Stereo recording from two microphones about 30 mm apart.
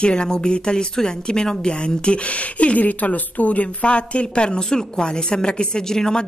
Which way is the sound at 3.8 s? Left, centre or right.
Left.